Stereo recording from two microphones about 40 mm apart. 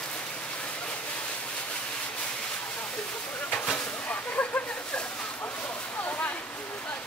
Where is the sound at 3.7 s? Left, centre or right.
Left.